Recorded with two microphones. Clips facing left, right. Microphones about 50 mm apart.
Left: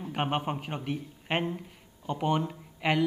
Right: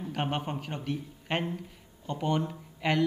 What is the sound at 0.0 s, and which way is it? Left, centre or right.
A man's voice, centre.